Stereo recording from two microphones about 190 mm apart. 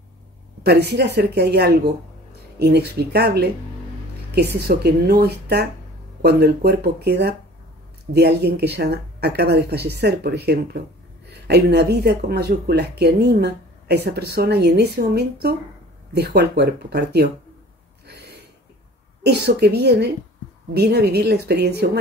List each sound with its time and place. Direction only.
0.7 s speech: 60° right (ahead or behind)
19.2 s speech: 60° right (ahead or behind)